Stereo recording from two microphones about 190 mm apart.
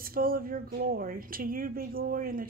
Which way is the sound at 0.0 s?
50° right (ahead or behind).